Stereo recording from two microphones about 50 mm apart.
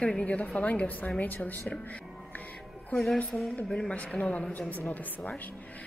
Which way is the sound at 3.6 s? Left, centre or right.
Centre.